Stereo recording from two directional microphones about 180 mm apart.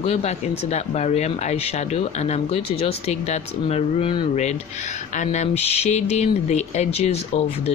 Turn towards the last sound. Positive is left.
turn(degrees=35)  # may be behind; listen again after turning